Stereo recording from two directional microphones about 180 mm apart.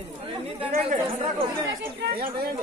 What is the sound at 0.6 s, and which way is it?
Speech, 35° right (ahead or behind).